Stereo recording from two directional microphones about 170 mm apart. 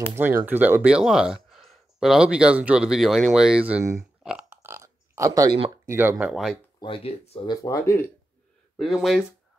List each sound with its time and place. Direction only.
0.2 s speech: 10° right (ahead or behind)
4.2 s a sound: 5° right (ahead or behind)
5.9 s speech: 10° right (ahead or behind)
6.8 s speech: 30° left (ahead or behind)
7.6 s speech: 20° left (ahead or behind)
8.7 s speech: centre (ahead or behind)